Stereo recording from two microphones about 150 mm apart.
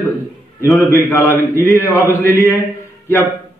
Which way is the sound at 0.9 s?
15° left (ahead or behind).